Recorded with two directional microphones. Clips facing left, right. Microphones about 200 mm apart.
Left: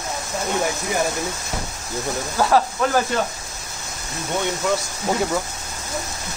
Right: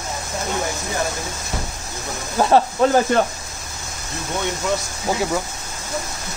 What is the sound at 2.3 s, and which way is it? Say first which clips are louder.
Speech: right 3 dB; 25° right (ahead or behind).